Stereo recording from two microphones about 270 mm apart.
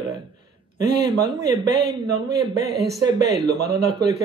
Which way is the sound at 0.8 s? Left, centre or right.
Centre.